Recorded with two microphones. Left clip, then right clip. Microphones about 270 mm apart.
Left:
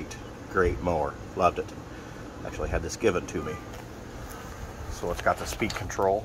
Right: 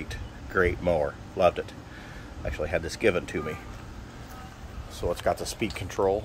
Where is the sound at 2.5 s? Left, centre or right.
Centre.